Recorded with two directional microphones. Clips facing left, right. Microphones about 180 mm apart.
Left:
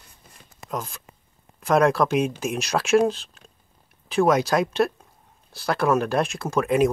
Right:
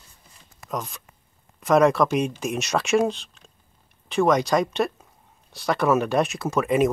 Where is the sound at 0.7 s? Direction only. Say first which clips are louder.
Even; centre (ahead or behind).